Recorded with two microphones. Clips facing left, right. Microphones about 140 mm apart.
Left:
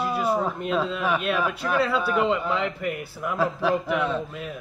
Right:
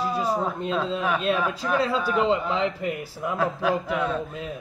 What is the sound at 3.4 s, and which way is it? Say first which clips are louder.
Speech: left 1 dB; 5° right (ahead or behind).